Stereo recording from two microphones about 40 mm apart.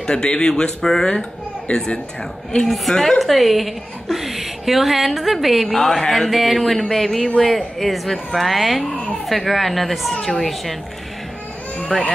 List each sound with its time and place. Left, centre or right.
0.0 s speech: left
1.7 s speech: left
2.6 s a woman's voice: centre
11.9 s speech: centre